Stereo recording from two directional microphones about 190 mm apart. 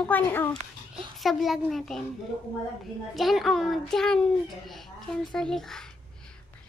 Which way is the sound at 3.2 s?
Centre (ahead or behind).